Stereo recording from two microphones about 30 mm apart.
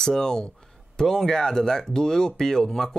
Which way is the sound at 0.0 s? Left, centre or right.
Left.